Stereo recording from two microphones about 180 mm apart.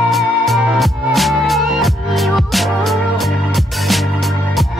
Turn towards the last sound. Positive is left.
turn(degrees=0)  # may be behind; listen again after turning